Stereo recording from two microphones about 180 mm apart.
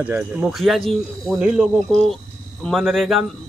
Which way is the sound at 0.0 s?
5° right (ahead or behind).